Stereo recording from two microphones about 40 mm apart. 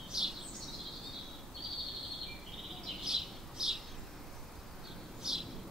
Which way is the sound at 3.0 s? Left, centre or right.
Centre.